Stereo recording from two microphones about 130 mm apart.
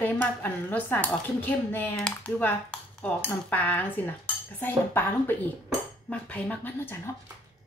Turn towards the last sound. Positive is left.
turn(degrees=15)  # may be behind; listen again after turning